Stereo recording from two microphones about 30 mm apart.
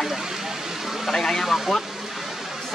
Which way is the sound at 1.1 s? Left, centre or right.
Centre.